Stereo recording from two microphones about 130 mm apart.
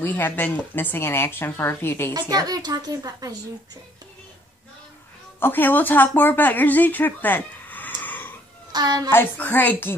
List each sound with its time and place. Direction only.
0.0 s speech: 15° left (ahead or behind)
2.1 s a woman's voice: 30° right (ahead or behind)
5.4 s speech: 15° left (ahead or behind)
8.7 s a child's voice: 30° right (ahead or behind)
9.1 s speech: 15° left (ahead or behind)